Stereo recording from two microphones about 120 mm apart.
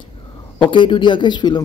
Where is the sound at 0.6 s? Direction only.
45° left (ahead or behind).